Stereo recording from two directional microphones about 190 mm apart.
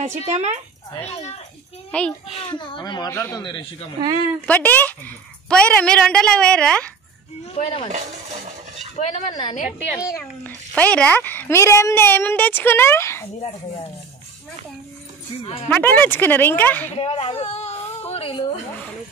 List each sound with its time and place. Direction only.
0.0 s speech: 35° right (ahead or behind)
0.9 s speech: 30° left (ahead or behind)
1.9 s a woman's voice: 5° left (ahead or behind)
2.3 s speech: 25° left (ahead or behind)
4.5 s a woman's voice: 10° left (ahead or behind)
7.5 s speech: 30° left (ahead or behind)
8.9 s speech: 40° left (ahead or behind)
10.0 s a child's voice: 15° left (ahead or behind)
15.4 s speech: 30° left (ahead or behind)
15.7 s a child's voice: 10° left (ahead or behind)
16.9 s a woman's voice: 30° left (ahead or behind)